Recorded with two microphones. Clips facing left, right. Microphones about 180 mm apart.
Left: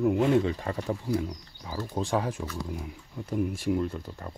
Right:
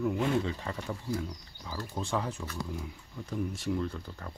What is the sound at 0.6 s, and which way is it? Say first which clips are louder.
Speech: left 6 dB; 40° left (ahead or behind).